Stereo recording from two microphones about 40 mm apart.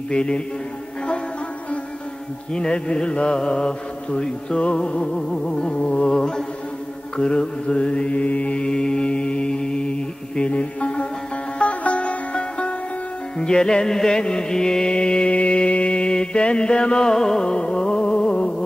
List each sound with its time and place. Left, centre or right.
0.1 s mantra: left
2.5 s mantra: left
8.6 s mantra: centre
11.5 s music: left; by 14.9 s centre
14.9 s mantra: left
17.0 s music: centre
17.5 s music: left